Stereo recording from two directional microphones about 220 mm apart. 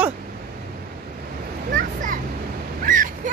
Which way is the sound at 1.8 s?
35° right (ahead or behind).